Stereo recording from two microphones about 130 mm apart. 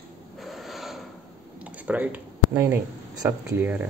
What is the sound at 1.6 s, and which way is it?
Speech, 10° right (ahead or behind).